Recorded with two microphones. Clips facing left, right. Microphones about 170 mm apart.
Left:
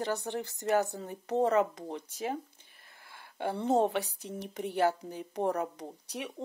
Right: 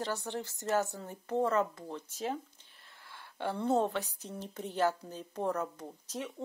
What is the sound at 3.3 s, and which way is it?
Speech, 15° left (ahead or behind).